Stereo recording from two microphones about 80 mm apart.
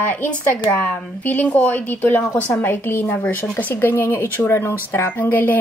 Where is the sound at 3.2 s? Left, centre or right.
Centre.